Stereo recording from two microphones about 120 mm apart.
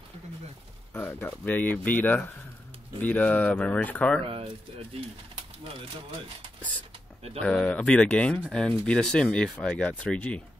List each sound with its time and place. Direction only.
0.9 s speech: 15° left (ahead or behind)
4.2 s speech: 55° right (ahead or behind)
7.4 s speech: 5° left (ahead or behind)